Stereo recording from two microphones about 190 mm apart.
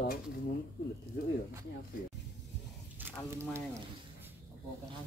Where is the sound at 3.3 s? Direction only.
15° right (ahead or behind).